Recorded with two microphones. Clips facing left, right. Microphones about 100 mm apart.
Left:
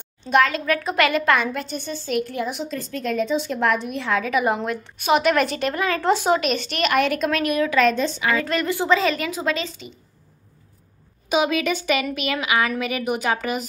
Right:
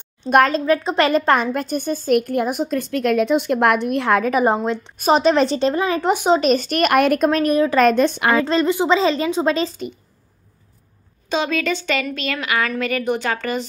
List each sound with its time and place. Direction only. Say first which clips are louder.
0.5 s a woman's voice: right 5 dB; 30° right (ahead or behind)
6.4 s a woman's voice: right 6 dB; 40° right (ahead or behind)
7.2 s a woman's voice: right 5 dB; 35° right (ahead or behind)
7.8 s a woman's voice: right 5 dB; 60° right (ahead or behind)
8.3 s a woman's voice: right 5 dB; 30° right (ahead or behind)
11.2 s a woman's voice: even; 10° left (ahead or behind)